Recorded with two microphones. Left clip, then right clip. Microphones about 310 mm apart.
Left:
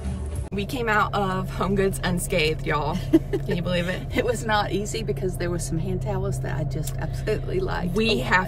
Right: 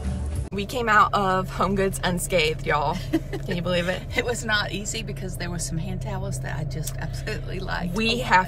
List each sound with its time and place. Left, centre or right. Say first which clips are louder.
0.6 s a woman's voice: right 4 dB; centre
4.1 s speech: left 3 dB; centre
7.9 s a woman's voice: right 1 dB; centre